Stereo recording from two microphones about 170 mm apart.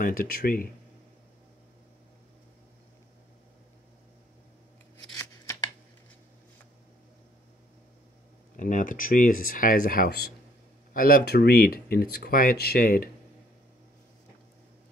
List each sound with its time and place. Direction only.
0.0 s speech: 60° left (ahead or behind)
5.1 s scissors: 15° left (ahead or behind)
8.5 s speech: 50° left (ahead or behind)